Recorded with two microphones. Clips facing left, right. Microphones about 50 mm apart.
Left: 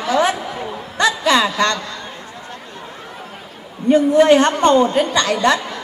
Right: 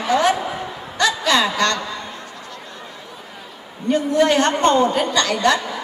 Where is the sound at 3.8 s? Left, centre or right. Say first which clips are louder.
Left 5 dB; left.